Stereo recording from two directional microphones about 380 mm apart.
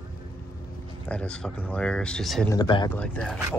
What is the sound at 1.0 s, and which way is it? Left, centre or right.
Speech, centre.